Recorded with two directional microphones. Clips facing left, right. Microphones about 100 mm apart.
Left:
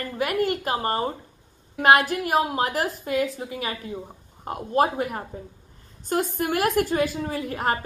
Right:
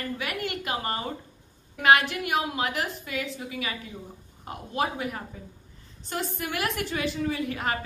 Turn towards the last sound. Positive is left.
turn(degrees=40)  # may be behind; listen again after turning